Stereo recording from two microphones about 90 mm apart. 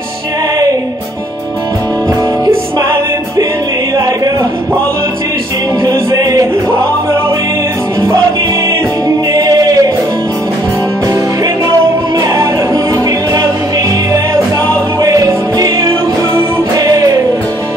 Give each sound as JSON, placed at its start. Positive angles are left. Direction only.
{"t": 3.9, "sound": "a sound", "side_deg": -45}
{"t": 5.9, "sound": "music", "side_deg": -50}
{"t": 9.3, "sound": "music", "side_deg": -45}
{"t": 12.2, "sound": "music", "side_deg": -45}